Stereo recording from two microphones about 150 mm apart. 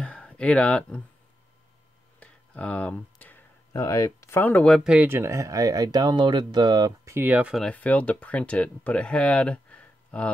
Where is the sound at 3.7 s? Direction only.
25° left (ahead or behind); by 5.1 s 5° right (ahead or behind).